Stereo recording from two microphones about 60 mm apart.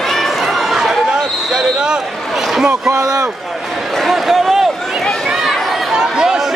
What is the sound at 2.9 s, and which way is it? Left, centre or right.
Speech, right.